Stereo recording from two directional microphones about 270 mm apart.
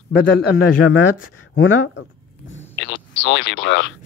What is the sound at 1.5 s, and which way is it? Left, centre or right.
Speech, left.